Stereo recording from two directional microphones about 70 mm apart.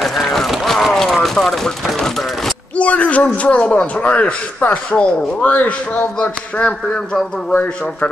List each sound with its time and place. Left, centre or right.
0.0 s run: centre
2.8 s a man's voice: centre